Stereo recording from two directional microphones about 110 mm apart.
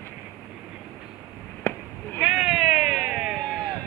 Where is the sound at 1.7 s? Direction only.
20° left (ahead or behind).